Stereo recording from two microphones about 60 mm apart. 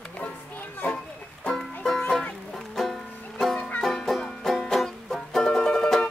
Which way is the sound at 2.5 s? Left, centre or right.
Centre.